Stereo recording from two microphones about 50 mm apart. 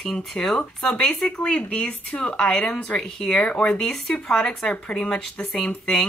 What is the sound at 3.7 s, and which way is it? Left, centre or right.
Speech, centre.